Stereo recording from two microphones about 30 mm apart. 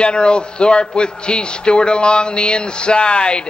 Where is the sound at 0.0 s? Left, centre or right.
Left.